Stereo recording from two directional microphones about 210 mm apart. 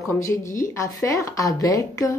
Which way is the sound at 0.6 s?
15° left (ahead or behind).